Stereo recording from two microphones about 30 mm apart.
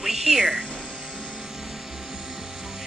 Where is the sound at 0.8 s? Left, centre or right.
Right.